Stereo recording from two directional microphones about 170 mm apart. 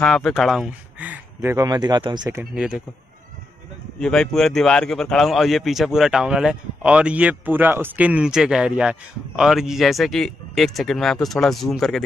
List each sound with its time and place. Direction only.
0.0 s speech: 5° left (ahead or behind); by 2.3 s 25° right (ahead or behind)
2.3 s speech: 5° right (ahead or behind)
4.0 s speech: 5° left (ahead or behind)